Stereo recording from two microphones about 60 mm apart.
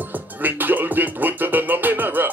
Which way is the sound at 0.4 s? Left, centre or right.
Right.